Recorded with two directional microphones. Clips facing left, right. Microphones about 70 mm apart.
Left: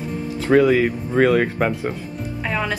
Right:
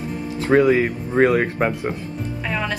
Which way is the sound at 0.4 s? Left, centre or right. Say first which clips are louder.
Even; right.